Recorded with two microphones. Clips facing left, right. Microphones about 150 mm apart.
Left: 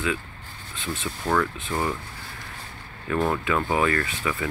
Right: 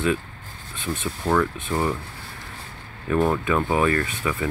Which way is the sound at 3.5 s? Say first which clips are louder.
Right 2 dB; 20° right (ahead or behind).